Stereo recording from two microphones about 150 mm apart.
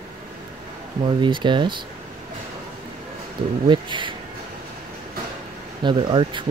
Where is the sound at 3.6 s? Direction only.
30° right (ahead or behind).